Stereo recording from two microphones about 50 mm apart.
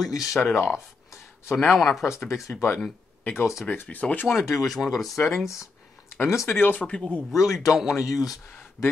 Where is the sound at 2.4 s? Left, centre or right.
Left.